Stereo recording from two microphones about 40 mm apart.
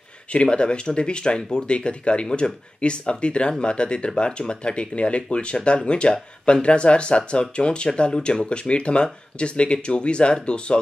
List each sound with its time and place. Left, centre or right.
0.3 s speech: left